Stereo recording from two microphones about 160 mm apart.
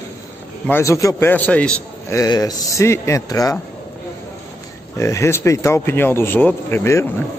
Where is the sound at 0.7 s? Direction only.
15° left (ahead or behind).